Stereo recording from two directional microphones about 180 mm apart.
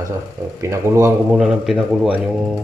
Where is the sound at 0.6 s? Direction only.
15° right (ahead or behind).